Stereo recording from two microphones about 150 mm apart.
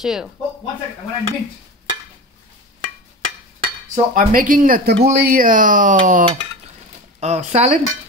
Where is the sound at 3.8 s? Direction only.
65° right (ahead or behind).